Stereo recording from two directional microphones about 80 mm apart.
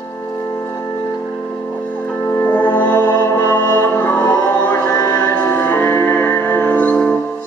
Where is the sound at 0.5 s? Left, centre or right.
Left.